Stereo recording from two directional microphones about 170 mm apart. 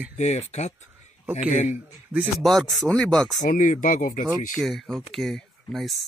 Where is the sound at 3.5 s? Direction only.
50° left (ahead or behind).